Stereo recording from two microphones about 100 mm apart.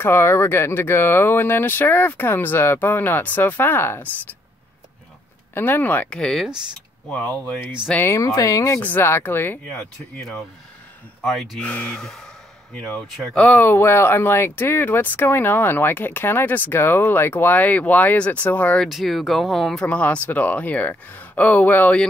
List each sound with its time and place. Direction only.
0.0 s speech: 25° left (ahead or behind)
5.5 s speech: 20° left (ahead or behind)
6.1 s speech: 5° left (ahead or behind)
7.1 s speech: 15° left (ahead or behind)
8.2 s speech: 35° left (ahead or behind)
11.2 s speech: 5° left (ahead or behind)
18.9 s speech: centre (ahead or behind); by 22.0 s 15° left (ahead or behind)